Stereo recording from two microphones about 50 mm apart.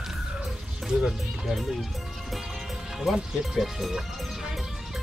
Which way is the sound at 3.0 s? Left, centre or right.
Centre.